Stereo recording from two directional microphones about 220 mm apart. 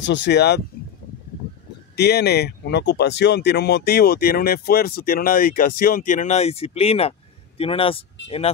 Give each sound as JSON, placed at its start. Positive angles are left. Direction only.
{"t": 0.0, "sound": "speech", "side_deg": 55}
{"t": 2.0, "sound": "speech", "side_deg": 45}